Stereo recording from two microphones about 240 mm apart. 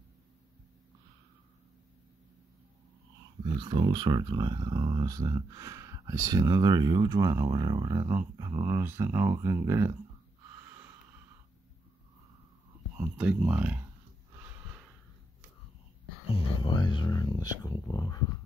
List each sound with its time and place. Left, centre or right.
3.4 s speech: centre
12.9 s speech: centre
14.4 s snort: centre
16.3 s speech: left